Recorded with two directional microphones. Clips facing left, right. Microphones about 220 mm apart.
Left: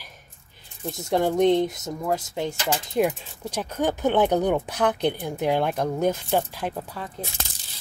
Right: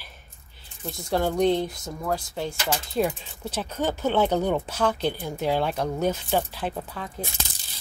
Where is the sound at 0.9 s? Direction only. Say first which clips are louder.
Left 2 dB; 20° left (ahead or behind).